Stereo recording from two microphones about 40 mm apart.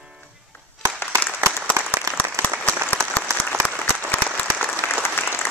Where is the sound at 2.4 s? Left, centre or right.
Left.